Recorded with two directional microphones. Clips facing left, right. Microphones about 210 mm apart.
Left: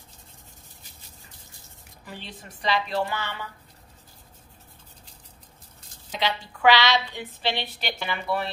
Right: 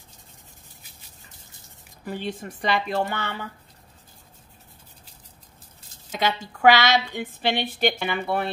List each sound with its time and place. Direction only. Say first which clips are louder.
2.0 s a woman's voice: right 10 dB; 50° right (ahead or behind)
6.1 s a woman's voice: right 3 dB; 45° right (ahead or behind)